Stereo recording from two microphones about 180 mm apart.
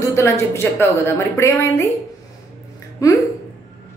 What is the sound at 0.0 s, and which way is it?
A woman's voice, 15° left (ahead or behind).